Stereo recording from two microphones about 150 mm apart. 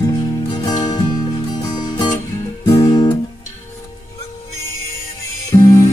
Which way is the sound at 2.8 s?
30° left (ahead or behind).